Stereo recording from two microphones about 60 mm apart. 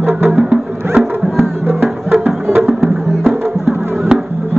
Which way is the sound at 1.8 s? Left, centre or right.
Right.